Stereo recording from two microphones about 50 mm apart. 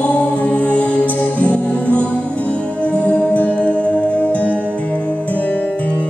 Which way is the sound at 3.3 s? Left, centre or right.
Left.